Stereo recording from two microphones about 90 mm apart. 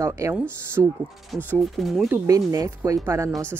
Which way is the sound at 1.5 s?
Centre (ahead or behind).